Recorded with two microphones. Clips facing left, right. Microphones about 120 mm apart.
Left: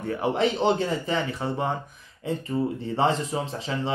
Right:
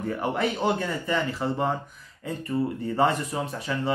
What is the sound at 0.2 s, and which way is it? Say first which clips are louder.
Speech: left 4 dB; 25° left (ahead or behind).